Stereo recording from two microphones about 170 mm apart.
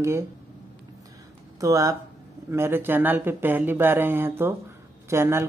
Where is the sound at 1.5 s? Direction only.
20° right (ahead or behind).